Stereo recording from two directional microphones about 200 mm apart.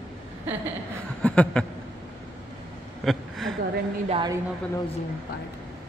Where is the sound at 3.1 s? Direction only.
Centre (ahead or behind).